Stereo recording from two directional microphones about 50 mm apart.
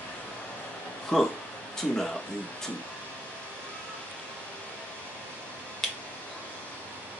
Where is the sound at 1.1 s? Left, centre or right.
Centre.